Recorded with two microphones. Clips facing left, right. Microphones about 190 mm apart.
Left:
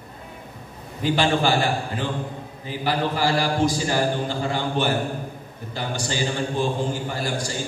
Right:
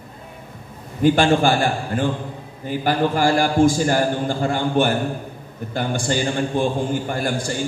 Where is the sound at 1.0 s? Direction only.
50° right (ahead or behind).